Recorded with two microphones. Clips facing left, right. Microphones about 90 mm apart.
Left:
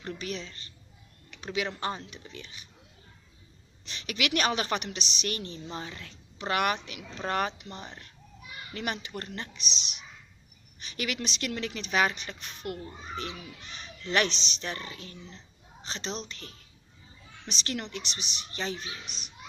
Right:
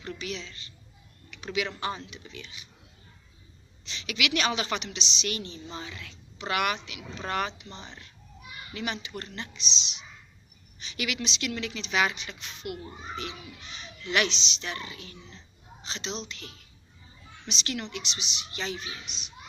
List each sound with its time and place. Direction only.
0.0 s speech: 40° left (ahead or behind)
3.8 s a woman's voice: 45° left (ahead or behind)